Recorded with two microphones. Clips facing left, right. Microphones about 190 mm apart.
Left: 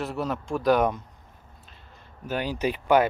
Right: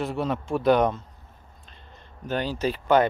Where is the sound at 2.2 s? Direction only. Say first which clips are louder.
Right 1 dB; 10° left (ahead or behind).